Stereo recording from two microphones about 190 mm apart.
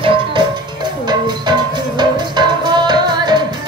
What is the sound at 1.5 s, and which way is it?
Music, 20° right (ahead or behind).